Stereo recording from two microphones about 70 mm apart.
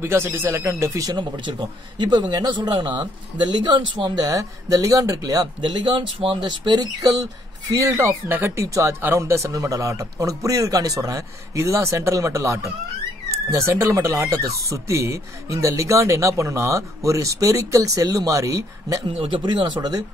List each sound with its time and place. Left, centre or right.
0.0 s speech: right
1.0 s speech: right
7.8 s speech: right
8.1 s speech: right
8.5 s speech: right
19.4 s speech: right